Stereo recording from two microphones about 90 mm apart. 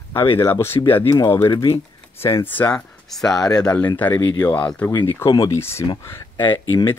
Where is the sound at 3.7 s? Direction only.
20° left (ahead or behind).